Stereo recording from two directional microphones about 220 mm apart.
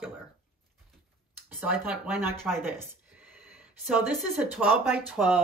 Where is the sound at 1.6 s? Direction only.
5° right (ahead or behind).